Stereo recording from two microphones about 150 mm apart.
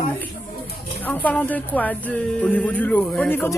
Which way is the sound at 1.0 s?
10° left (ahead or behind).